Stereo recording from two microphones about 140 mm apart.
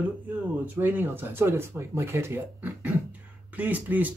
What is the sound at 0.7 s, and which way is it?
Speech, 15° right (ahead or behind).